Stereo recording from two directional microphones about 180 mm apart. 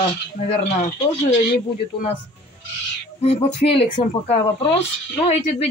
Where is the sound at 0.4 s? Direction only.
40° left (ahead or behind).